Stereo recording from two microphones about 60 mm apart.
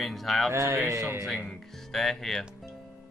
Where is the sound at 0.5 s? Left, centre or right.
Right.